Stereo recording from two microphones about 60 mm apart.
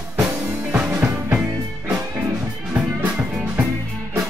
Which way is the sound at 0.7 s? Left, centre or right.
Right.